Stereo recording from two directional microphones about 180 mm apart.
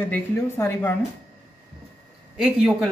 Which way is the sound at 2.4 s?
5° right (ahead or behind).